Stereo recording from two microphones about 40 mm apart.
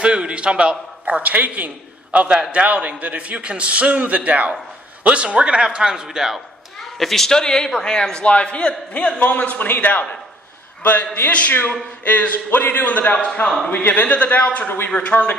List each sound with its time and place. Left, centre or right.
0.0 s a man's voice: right
1.2 s a man's voice: right
2.1 s a man's voice: right; by 6.4 s centre
7.0 s speech: centre
7.2 s a man's voice: centre; by 9.1 s left
9.2 s a man's voice: left
12.8 s a man's voice: left
13.4 s a man's voice: left
13.8 s a man's voice: left